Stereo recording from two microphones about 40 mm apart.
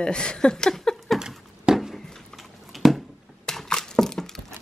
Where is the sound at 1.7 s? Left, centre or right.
Right.